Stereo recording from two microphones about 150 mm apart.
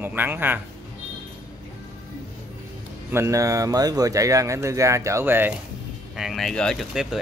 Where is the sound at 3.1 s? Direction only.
20° right (ahead or behind).